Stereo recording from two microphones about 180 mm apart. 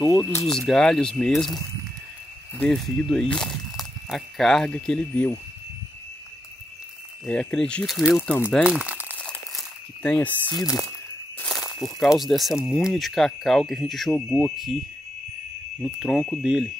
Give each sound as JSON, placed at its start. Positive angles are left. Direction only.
{"t": 0.0, "sound": "speech", "side_deg": 15}
{"t": 0.5, "sound": "speech", "side_deg": 5}
{"t": 2.6, "sound": "speech", "side_deg": 5}
{"t": 7.2, "sound": "speech", "side_deg": 5}
{"t": 9.2, "sound": "crumpling", "side_deg": 5}
{"t": 11.3, "sound": "speech", "side_deg": 5}
{"t": 15.8, "sound": "speech", "side_deg": 0}